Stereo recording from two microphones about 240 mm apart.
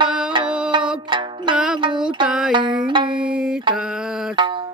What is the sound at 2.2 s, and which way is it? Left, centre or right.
Music, centre.